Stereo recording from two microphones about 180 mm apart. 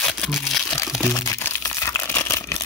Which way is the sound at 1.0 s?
15° left (ahead or behind).